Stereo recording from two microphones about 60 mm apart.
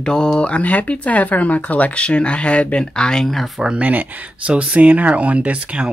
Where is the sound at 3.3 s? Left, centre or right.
Centre.